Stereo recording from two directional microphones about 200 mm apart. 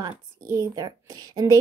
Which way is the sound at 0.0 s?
15° right (ahead or behind).